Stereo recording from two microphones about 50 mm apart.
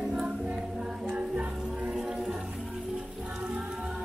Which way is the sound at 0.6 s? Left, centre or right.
Centre.